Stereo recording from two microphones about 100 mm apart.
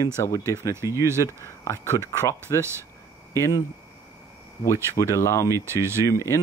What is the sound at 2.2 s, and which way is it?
Speech, 25° left (ahead or behind).